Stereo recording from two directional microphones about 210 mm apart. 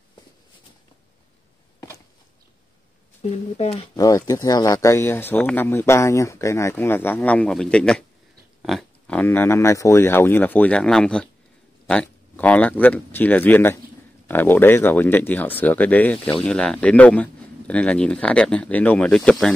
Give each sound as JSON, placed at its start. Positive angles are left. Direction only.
{"t": 3.2, "sound": "speech", "side_deg": 30}
{"t": 3.9, "sound": "speech", "side_deg": 15}